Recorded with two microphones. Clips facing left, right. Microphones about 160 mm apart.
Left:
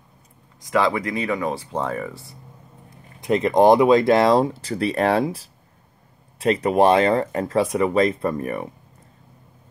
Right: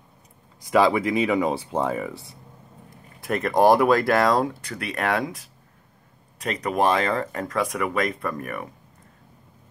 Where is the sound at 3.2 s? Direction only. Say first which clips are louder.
Left 3 dB; 20° left (ahead or behind).